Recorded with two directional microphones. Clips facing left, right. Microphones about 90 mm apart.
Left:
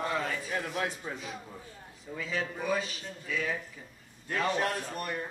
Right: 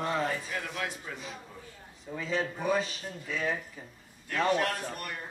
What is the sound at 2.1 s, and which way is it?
Speech, 25° right (ahead or behind).